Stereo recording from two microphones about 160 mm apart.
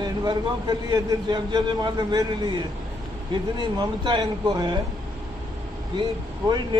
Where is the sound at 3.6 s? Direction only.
30° right (ahead or behind).